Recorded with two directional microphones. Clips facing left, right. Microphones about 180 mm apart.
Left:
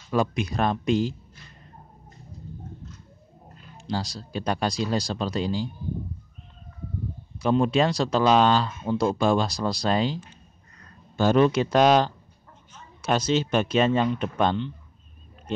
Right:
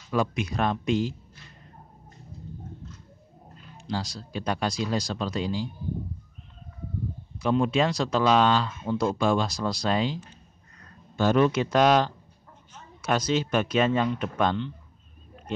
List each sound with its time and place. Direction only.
0.1 s speech: 35° left (ahead or behind)
3.8 s speech: 35° left (ahead or behind)
7.3 s speech: 35° left (ahead or behind)